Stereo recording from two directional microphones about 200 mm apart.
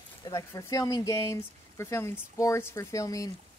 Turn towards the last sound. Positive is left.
turn(degrees=15)  # may be behind; listen again after turning